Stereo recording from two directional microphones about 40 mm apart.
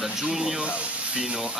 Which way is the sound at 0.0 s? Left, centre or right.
Centre.